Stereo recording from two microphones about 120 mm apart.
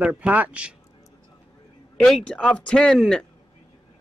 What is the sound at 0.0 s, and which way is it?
Speech, 10° right (ahead or behind).